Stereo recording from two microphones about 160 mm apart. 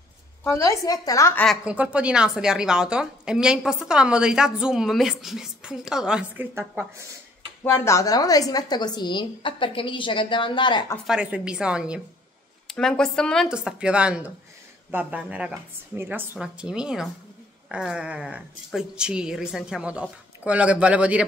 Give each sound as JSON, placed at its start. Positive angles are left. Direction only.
{"t": 0.4, "sound": "a woman's voice", "side_deg": 20}
{"t": 1.4, "sound": "a woman's voice", "side_deg": -5}
{"t": 7.6, "sound": "a woman's voice", "side_deg": 15}
{"t": 11.1, "sound": "a woman's voice", "side_deg": -5}